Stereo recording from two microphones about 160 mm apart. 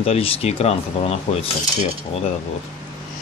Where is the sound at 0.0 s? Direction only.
40° left (ahead or behind).